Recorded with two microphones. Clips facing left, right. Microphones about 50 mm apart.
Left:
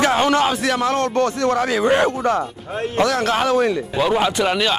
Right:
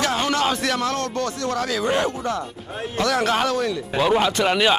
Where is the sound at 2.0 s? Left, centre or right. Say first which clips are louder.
Left 6 dB; left.